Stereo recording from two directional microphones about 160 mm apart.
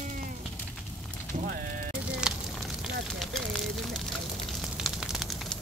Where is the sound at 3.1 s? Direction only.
Centre (ahead or behind).